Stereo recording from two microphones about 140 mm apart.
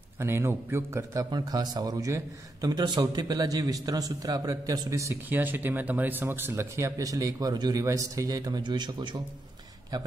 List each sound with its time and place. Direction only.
0.2 s a man's voice: 20° right (ahead or behind)
1.3 s a man's voice: 30° right (ahead or behind)